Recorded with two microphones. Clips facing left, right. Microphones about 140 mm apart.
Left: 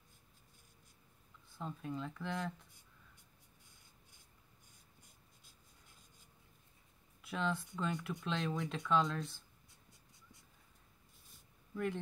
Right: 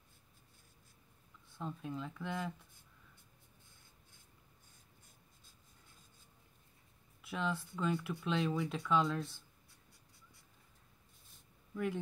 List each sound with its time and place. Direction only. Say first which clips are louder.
1.5 s speech: even; centre (ahead or behind)
7.2 s speech: even; centre (ahead or behind)
9.7 s writing: even; 20° left (ahead or behind)
11.7 s speech: right 1 dB; centre (ahead or behind)